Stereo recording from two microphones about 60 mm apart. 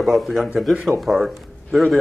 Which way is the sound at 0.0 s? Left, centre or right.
Centre.